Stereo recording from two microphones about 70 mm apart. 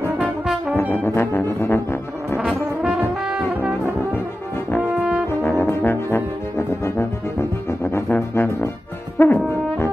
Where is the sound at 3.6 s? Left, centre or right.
Right.